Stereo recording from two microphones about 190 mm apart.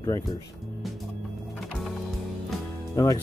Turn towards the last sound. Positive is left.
turn(degrees=15)  # may be behind; listen again after turning